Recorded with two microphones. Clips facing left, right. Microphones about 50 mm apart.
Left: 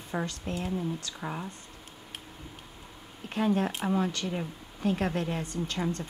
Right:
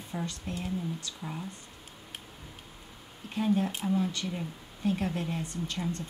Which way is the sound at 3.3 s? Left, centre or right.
Left.